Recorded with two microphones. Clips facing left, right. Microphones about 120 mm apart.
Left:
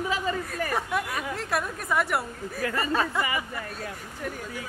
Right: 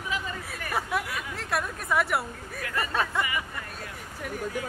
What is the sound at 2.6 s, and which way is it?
Speech, 30° left (ahead or behind).